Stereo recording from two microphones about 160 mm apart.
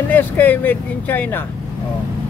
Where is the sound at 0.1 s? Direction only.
10° left (ahead or behind).